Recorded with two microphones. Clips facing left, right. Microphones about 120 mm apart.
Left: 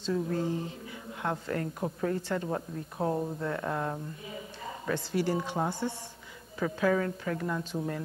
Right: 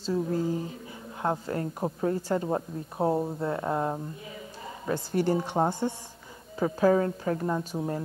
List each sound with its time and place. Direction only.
0.0 s a woman's voice: 30° right (ahead or behind)
4.9 s a woman's voice: 45° right (ahead or behind)
6.6 s a woman's voice: 30° right (ahead or behind)